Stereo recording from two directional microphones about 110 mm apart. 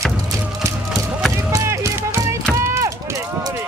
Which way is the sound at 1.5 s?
25° right (ahead or behind).